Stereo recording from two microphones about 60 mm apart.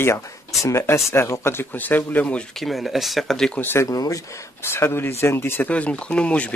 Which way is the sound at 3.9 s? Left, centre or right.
Left.